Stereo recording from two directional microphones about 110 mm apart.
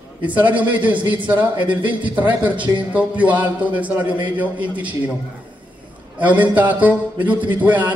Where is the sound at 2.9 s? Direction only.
10° right (ahead or behind).